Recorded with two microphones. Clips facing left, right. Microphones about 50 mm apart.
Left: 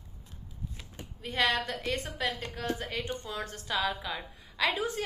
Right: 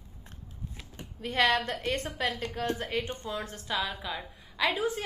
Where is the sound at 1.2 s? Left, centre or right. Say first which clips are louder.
Right 3 dB; right.